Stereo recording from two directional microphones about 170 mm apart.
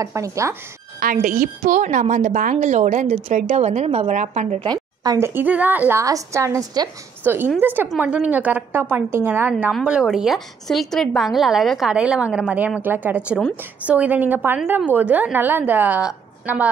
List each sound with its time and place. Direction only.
0.0 s a woman's voice: 20° right (ahead or behind)
0.9 s a woman's voice: 55° right (ahead or behind)
4.6 s a woman's voice: 20° right (ahead or behind); by 16.6 s 5° right (ahead or behind)